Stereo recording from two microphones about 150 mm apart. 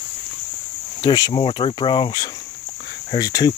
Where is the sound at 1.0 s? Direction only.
30° left (ahead or behind).